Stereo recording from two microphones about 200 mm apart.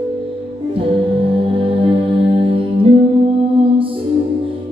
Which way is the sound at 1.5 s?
25° right (ahead or behind).